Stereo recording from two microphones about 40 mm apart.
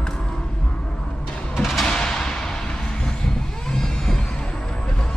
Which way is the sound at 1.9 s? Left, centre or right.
Centre.